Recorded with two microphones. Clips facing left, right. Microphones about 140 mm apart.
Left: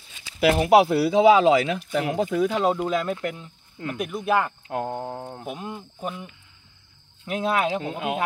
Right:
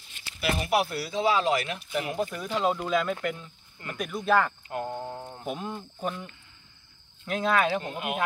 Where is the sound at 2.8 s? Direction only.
40° left (ahead or behind).